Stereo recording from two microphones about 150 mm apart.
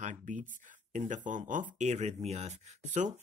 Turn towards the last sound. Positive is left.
turn(degrees=-50)  # may be behind; listen again after turning